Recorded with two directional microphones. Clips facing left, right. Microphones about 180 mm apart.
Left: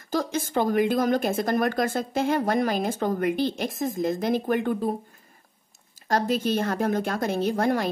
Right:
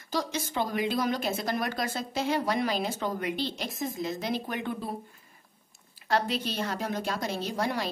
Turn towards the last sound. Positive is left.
turn(degrees=50)  # may be behind; listen again after turning